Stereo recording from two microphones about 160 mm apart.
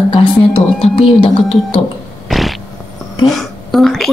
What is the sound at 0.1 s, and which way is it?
A woman's voice, 30° left (ahead or behind).